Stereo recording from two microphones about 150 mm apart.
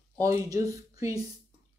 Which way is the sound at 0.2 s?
20° right (ahead or behind).